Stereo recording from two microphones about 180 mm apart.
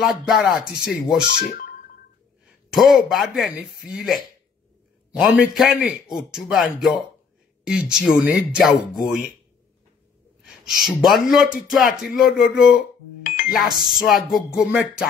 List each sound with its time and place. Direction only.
0.0 s speech: centre (ahead or behind)
1.3 s speech: 60° left (ahead or behind)
2.7 s a man's voice: centre (ahead or behind)
10.4 s speech: centre (ahead or behind)